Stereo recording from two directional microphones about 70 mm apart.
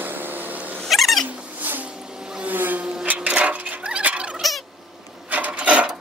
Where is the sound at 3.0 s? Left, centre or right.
Centre.